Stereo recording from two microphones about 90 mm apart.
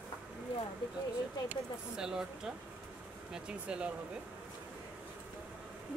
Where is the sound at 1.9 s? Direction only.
5° right (ahead or behind).